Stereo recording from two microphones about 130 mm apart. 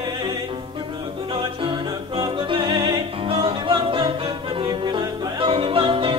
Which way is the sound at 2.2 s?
35° right (ahead or behind).